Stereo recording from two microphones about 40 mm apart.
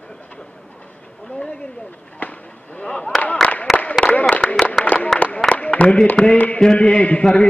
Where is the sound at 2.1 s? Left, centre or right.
Left.